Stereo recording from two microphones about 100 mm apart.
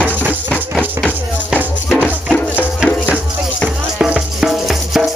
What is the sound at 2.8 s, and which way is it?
Music, 10° left (ahead or behind).